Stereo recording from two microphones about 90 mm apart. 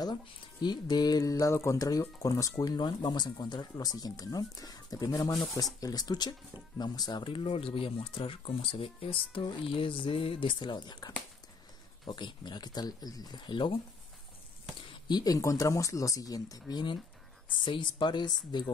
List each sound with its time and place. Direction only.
0.6 s speech: 50° left (ahead or behind)
2.6 s speech: 50° left (ahead or behind)
14.9 s speech: 50° left (ahead or behind)
17.6 s speech: 60° left (ahead or behind)